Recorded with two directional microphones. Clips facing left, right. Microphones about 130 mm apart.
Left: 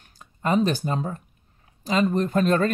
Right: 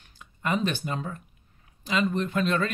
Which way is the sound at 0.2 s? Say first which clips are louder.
Left 5 dB; 35° left (ahead or behind).